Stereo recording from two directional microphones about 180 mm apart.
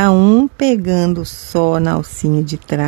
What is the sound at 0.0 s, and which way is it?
Speech, 60° right (ahead or behind).